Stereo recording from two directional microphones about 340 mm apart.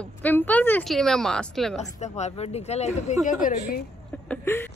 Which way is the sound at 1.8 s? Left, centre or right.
Centre.